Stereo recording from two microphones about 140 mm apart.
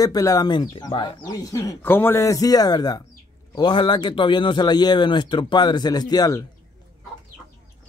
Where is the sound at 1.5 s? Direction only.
20° left (ahead or behind).